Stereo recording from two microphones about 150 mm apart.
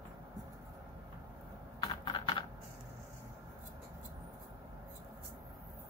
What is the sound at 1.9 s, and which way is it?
Typing, 30° left (ahead or behind).